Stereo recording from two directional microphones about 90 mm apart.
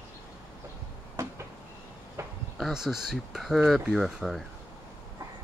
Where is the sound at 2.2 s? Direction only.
30° right (ahead or behind).